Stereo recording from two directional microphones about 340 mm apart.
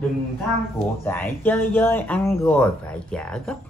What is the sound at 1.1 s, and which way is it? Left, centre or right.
A woman's voice, centre.